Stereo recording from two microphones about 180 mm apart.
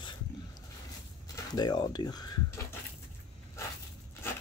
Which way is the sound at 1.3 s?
25° left (ahead or behind).